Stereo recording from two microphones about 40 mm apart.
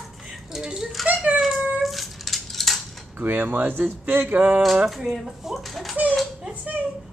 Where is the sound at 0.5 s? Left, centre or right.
Centre.